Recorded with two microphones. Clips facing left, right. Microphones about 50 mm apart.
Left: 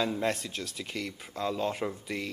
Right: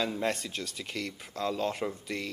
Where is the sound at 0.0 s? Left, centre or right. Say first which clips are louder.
Left 1 dB; centre.